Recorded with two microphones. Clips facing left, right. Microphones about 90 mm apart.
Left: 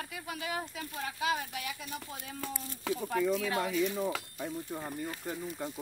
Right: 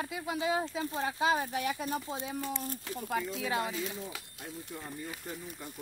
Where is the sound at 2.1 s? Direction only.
25° right (ahead or behind).